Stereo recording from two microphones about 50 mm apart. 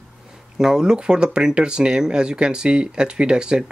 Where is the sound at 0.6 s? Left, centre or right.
Centre.